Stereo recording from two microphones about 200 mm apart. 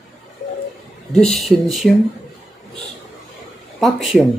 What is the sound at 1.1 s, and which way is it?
Speech, centre (ahead or behind).